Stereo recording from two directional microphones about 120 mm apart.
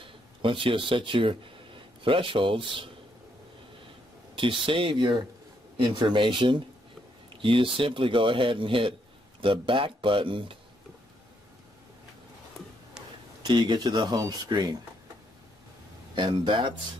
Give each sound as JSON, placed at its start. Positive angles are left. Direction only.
{"t": 0.0, "sound": "speech", "side_deg": -45}
{"t": 4.4, "sound": "speech", "side_deg": -45}
{"t": 13.4, "sound": "speech", "side_deg": -40}
{"t": 16.2, "sound": "speech", "side_deg": -40}